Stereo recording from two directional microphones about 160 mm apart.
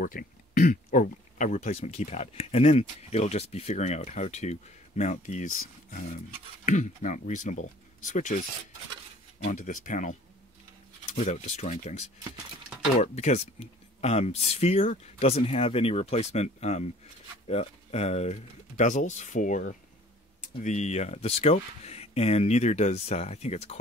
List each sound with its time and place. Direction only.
0.0 s speech: 60° left (ahead or behind)
9.4 s speech: 55° left (ahead or behind)
11.1 s speech: 45° left (ahead or behind)